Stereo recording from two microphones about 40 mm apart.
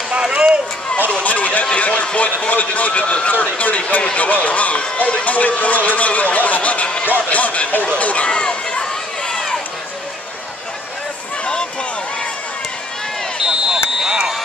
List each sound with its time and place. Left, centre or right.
0.2 s a sound: right
1.2 s speech: left
3.7 s speech: left
8.3 s run: left
9.3 s run: centre
13.5 s a sound: centre